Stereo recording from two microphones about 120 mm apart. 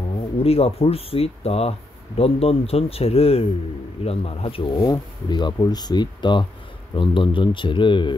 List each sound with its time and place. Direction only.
0.4 s speech: 55° left (ahead or behind)
4.8 s speech: 35° left (ahead or behind)